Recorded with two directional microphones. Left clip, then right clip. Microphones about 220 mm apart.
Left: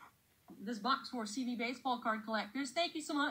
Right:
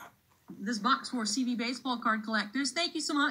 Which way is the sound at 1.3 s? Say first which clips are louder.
Right 6 dB; 40° right (ahead or behind).